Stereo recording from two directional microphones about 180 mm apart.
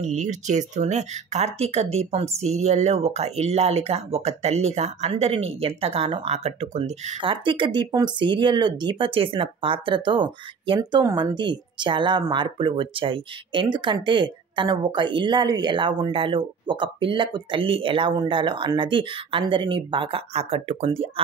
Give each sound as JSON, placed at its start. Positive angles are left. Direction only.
{"t": 0.0, "sound": "speech", "side_deg": -40}